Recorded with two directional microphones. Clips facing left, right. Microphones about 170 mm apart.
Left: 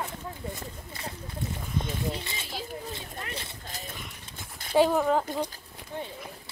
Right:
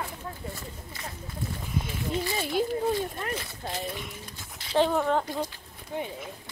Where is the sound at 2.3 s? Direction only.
55° right (ahead or behind).